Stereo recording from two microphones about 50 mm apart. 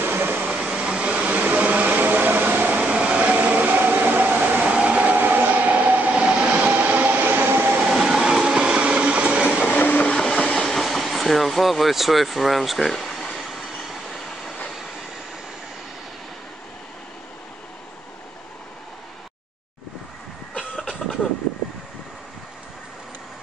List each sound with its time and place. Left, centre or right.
0.0 s a sound: right
0.5 s vacuum cleaner: centre; by 2.8 s right
2.8 s train: centre
5.1 s train: right
7.8 s train: centre
9.7 s train: left
10.1 s train: centre
10.5 s vehicle: centre
13.4 s train: centre